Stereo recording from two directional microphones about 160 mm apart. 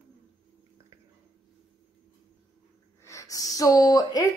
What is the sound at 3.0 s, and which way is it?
Speech, 20° left (ahead or behind).